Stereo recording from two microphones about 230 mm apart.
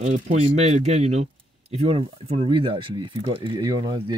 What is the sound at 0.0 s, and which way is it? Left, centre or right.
Speech, right.